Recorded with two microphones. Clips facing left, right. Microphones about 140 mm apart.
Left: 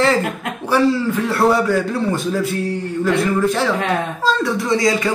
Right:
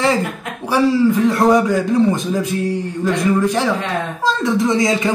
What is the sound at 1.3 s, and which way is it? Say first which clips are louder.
Speech: right 2 dB; 15° right (ahead or behind).